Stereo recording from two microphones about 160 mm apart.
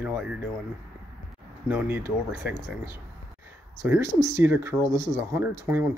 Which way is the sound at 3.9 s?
20° right (ahead or behind).